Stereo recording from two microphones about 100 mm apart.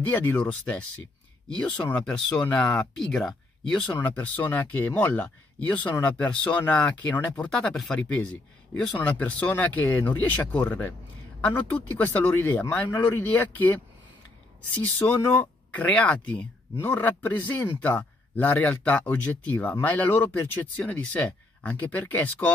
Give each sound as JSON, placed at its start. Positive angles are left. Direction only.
{"t": 0.0, "sound": "speech", "side_deg": 20}
{"t": 4.1, "sound": "speech", "side_deg": 15}
{"t": 14.8, "sound": "speech", "side_deg": 20}